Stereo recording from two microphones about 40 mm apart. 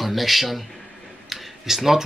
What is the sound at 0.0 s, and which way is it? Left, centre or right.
A man's voice, centre.